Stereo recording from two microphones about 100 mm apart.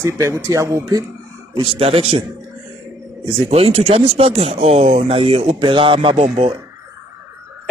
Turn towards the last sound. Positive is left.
turn(degrees=-65)  # may be behind; listen again after turning